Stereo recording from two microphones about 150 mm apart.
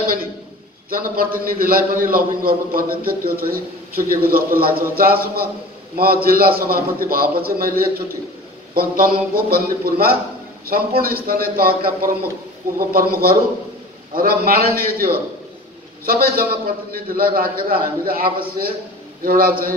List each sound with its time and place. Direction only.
0.8 s a man's voice: 75° right (ahead or behind)
16.1 s a man's voice: 80° right